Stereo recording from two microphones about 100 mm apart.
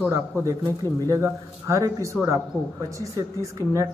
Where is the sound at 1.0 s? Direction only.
30° right (ahead or behind).